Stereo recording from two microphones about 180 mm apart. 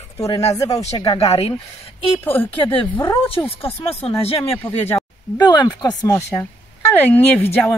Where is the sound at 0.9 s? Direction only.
35° left (ahead or behind).